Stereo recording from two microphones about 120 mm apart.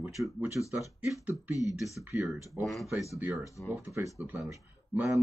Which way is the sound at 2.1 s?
25° right (ahead or behind).